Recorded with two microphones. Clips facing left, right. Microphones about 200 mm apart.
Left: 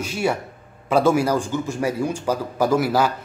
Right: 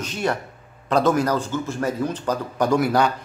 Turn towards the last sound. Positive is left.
turn(degrees=5)  # may be behind; listen again after turning